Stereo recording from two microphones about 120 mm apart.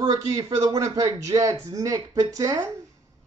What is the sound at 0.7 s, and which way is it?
Speech, 25° right (ahead or behind).